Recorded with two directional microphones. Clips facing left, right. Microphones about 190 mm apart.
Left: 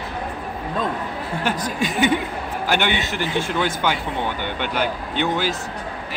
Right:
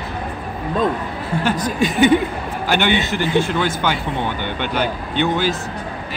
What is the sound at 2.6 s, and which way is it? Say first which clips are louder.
Speech: right 4 dB; 10° left (ahead or behind).